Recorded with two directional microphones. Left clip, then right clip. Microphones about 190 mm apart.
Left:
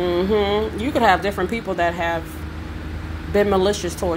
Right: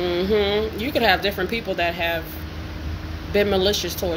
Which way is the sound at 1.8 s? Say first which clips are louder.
Left 3 dB; 25° left (ahead or behind).